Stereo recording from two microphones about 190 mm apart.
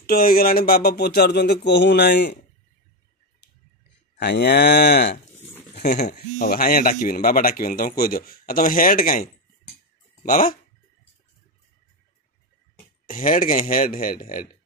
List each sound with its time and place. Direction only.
0.0 s speech: 50° left (ahead or behind)
4.2 s speech: 60° left (ahead or behind)
6.3 s speech: 50° left (ahead or behind)
13.0 s speech: 45° left (ahead or behind)